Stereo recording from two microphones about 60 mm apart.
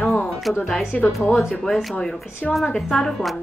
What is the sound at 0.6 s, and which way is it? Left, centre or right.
A woman's voice, centre.